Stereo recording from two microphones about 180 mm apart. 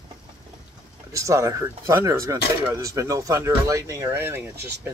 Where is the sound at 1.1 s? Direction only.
15° right (ahead or behind).